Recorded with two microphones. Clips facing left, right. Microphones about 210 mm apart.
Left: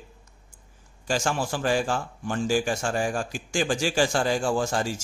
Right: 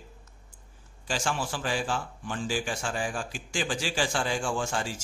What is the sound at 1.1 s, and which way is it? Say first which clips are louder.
A man's voice: left 5 dB; 45° left (ahead or behind).